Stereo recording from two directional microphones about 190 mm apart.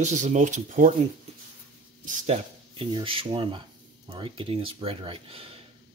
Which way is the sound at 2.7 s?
25° right (ahead or behind).